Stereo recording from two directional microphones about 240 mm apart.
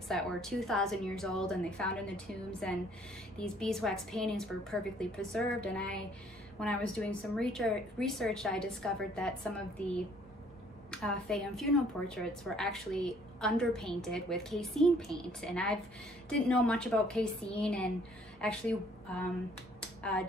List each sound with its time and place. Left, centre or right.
0.1 s a woman's voice: centre
10.9 s a woman's voice: centre
19.8 s finger snapping: centre